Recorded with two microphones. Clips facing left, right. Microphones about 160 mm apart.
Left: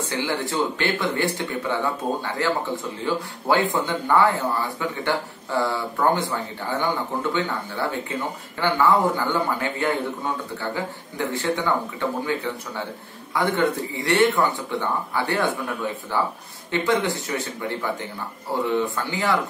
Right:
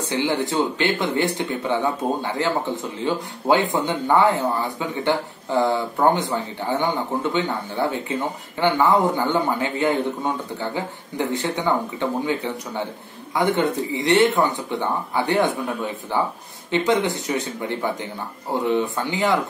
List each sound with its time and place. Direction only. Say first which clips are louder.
0.0 s a man's voice: right 3 dB; 20° right (ahead or behind)